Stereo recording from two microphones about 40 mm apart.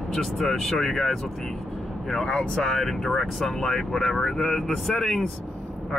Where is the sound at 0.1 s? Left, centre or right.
Centre.